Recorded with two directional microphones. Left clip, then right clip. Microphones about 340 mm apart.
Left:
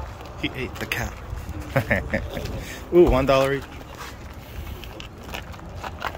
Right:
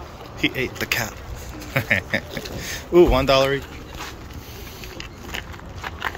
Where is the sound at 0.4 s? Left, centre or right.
Centre.